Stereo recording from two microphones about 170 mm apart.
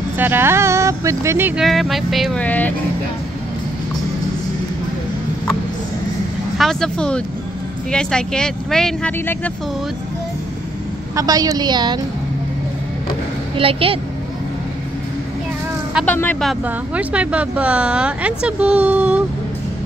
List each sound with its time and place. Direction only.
0.2 s speech: 15° right (ahead or behind)
1.6 s speech: centre (ahead or behind)
2.4 s speech: 10° left (ahead or behind)
6.6 s speech: 5° left (ahead or behind)
11.1 s a woman's voice: 20° right (ahead or behind)
13.6 s a woman's voice: 35° right (ahead or behind)
16.1 s speech: 10° left (ahead or behind)
16.6 s speech: 10° right (ahead or behind)